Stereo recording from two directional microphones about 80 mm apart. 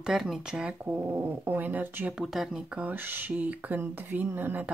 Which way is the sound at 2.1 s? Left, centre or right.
Centre.